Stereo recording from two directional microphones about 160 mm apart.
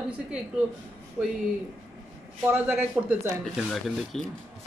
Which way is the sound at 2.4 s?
15° right (ahead or behind).